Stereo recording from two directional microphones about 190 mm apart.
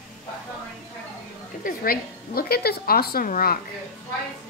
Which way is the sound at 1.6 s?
50° left (ahead or behind).